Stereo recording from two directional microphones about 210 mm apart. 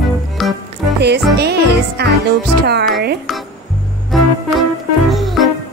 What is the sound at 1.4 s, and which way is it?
Music, 50° right (ahead or behind).